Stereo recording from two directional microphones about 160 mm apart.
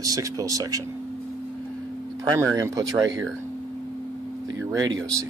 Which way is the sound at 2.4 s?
20° right (ahead or behind).